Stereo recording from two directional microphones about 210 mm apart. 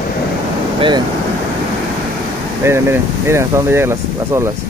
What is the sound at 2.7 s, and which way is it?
Speech, 10° right (ahead or behind).